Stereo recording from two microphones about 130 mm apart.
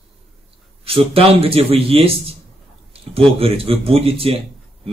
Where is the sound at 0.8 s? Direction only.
45° right (ahead or behind).